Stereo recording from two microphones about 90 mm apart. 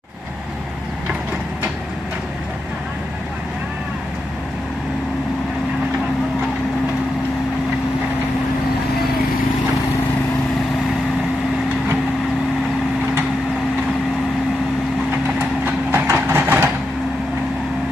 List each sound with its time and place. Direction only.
15.6 s train: 25° right (ahead or behind)